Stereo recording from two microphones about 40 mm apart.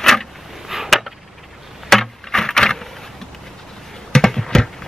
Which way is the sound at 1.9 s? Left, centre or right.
Centre.